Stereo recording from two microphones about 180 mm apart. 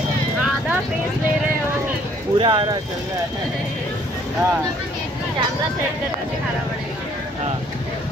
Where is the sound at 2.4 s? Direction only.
25° right (ahead or behind).